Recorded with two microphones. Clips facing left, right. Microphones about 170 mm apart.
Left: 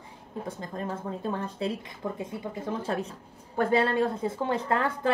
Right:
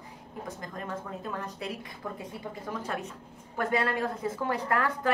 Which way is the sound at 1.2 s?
30° left (ahead or behind).